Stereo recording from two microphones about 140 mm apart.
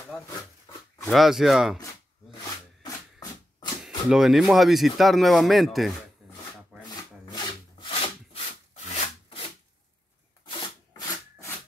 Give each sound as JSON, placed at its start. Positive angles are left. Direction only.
{"t": 1.0, "sound": "speech", "side_deg": 0}
{"t": 3.8, "sound": "speech", "side_deg": -5}
{"t": 6.8, "sound": "wood", "side_deg": 30}
{"t": 10.9, "sound": "wood", "side_deg": 25}